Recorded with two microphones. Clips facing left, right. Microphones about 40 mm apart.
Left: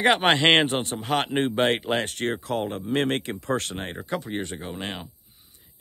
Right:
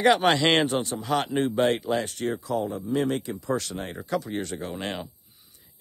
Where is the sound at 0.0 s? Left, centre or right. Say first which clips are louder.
Left 1 dB; left.